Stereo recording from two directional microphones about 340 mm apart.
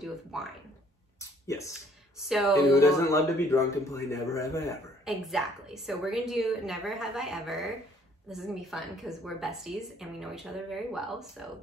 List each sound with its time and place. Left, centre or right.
0.0 s speech: centre
2.1 s speech: centre
2.5 s a woman's voice: centre